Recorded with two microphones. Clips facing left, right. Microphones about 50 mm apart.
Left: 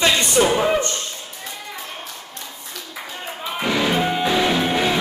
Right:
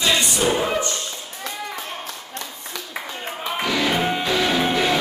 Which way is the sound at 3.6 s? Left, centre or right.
Centre.